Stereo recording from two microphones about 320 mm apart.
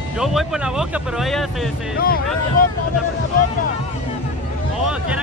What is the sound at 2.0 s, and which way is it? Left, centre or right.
Speech, left.